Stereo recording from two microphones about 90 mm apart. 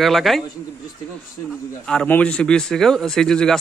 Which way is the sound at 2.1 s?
15° left (ahead or behind).